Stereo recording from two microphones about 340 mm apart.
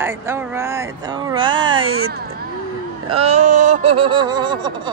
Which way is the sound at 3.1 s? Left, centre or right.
Centre.